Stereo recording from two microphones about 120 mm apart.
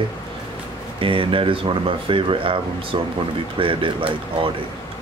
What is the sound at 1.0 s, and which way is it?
Speech, 45° right (ahead or behind).